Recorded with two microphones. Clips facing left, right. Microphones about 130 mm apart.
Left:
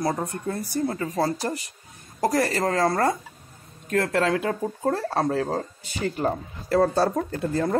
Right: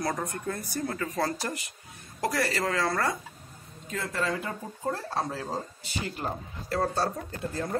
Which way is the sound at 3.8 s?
65° left (ahead or behind).